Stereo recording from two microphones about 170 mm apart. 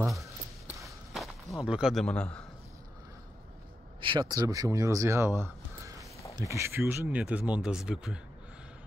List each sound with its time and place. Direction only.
0.0 s speech: centre (ahead or behind)
0.8 s a sound: centre (ahead or behind)
4.0 s speech: 25° right (ahead or behind); by 8.2 s 5° right (ahead or behind)